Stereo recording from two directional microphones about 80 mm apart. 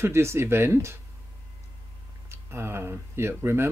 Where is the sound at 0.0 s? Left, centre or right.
Right.